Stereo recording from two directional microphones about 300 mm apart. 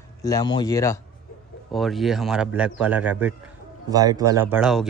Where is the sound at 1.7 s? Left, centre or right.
Centre.